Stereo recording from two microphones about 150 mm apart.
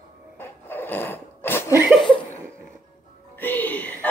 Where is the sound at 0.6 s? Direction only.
15° left (ahead or behind).